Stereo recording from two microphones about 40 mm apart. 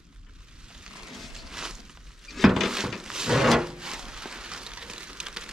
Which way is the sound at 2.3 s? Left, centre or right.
Centre.